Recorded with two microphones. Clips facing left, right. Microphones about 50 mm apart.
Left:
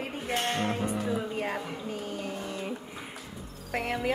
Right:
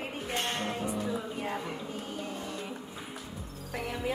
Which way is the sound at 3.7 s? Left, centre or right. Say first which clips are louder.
Left 5 dB; left.